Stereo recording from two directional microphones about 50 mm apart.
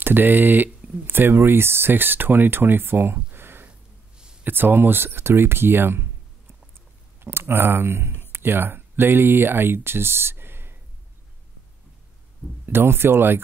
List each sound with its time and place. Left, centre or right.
0.0 s speech: right
7.3 s speech: right
12.6 s speech: right